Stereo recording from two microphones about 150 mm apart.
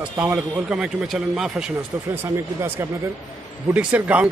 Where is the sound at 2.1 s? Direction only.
15° right (ahead or behind).